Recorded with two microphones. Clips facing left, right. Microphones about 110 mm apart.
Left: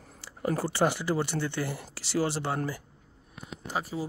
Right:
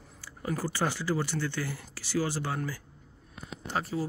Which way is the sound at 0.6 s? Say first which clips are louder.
Left 3 dB; 20° left (ahead or behind).